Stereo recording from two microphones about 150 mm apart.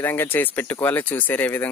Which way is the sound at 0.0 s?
15° left (ahead or behind).